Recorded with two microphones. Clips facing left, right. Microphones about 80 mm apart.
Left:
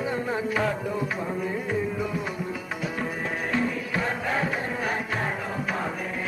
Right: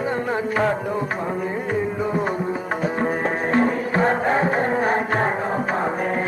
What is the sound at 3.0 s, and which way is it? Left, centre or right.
Music, right.